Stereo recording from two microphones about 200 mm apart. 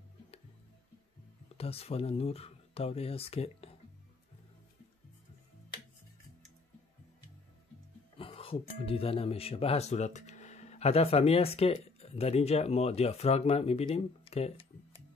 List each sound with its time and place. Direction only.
1.6 s speech: 30° left (ahead or behind)
8.2 s speech: 25° left (ahead or behind)